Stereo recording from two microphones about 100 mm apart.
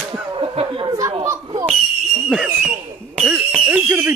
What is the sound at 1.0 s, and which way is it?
Chatter, 35° right (ahead or behind).